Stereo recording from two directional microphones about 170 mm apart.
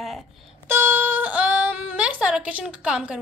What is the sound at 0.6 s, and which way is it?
Speech, 15° right (ahead or behind).